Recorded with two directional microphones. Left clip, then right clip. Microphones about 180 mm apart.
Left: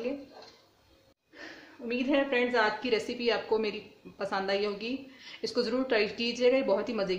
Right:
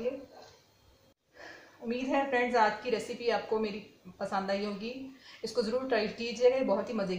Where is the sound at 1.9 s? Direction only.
45° left (ahead or behind).